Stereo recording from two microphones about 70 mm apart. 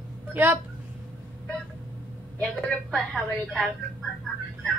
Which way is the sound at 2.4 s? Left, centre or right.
Centre.